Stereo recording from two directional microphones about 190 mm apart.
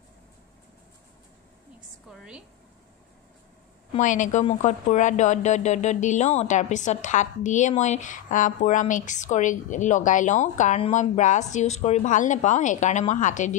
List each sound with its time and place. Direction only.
2.0 s a woman's voice: 5° right (ahead or behind)
3.9 s a woman's voice: 40° left (ahead or behind)